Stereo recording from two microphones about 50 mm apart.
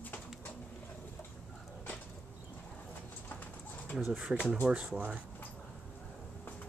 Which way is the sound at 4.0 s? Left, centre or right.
Centre.